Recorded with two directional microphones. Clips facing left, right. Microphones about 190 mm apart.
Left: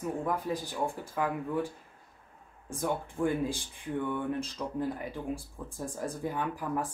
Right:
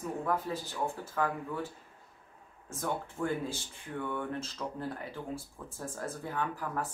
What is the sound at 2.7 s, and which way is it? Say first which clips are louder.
Speech: left 3 dB; 15° left (ahead or behind).